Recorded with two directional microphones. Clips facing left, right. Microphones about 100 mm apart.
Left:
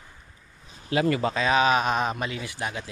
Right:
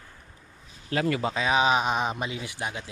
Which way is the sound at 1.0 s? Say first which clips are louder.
Left 1 dB; 5° right (ahead or behind).